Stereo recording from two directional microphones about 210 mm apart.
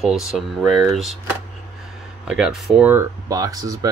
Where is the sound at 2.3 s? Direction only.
Centre (ahead or behind).